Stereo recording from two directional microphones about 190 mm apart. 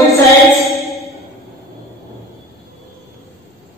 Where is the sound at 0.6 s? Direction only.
Centre (ahead or behind).